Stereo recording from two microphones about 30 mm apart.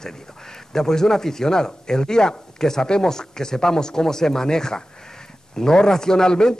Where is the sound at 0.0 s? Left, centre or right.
Centre.